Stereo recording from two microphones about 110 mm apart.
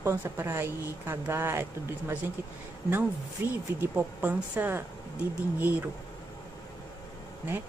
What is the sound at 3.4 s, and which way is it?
Speech, 20° right (ahead or behind).